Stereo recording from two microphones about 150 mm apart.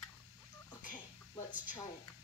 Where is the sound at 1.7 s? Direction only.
25° left (ahead or behind).